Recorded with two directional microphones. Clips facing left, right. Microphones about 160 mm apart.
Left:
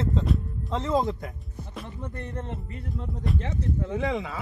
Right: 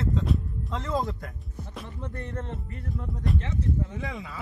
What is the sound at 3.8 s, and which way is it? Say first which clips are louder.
Speech: left 8 dB; 90° left.